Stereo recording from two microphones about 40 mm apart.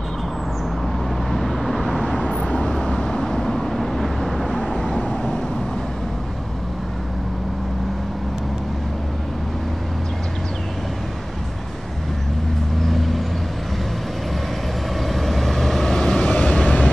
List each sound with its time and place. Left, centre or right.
1.3 s vehicle: centre
2.5 s vehicle: left; by 4.8 s centre
12.8 s vehicle: centre
15.0 s vehicle: centre
16.3 s vehicle: left